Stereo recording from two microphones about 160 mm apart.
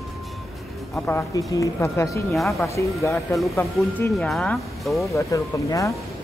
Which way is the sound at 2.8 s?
20° left (ahead or behind).